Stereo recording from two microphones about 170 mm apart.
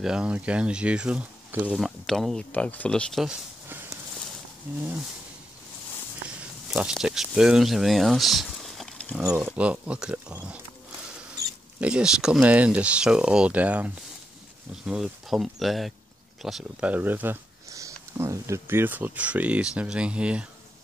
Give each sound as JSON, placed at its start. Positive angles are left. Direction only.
{"t": 0.0, "sound": "speech", "side_deg": -5}
{"t": 1.8, "sound": "speech", "side_deg": 0}
{"t": 3.6, "sound": "a sound", "side_deg": -15}
{"t": 6.2, "sound": "speech", "side_deg": -5}
{"t": 11.8, "sound": "speech", "side_deg": -5}